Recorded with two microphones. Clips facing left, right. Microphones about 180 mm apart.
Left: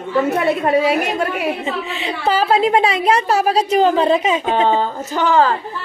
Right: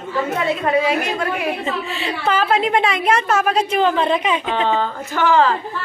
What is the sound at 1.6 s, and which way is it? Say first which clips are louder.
Speech: left 1 dB; 20° left (ahead or behind).